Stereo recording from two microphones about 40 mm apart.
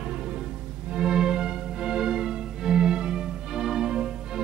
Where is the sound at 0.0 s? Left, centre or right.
Right.